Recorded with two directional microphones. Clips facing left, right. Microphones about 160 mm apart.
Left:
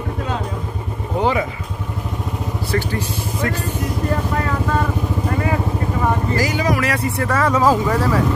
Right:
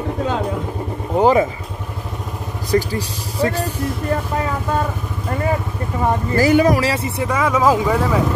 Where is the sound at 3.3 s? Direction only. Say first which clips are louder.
Right 5 dB; 35° right (ahead or behind).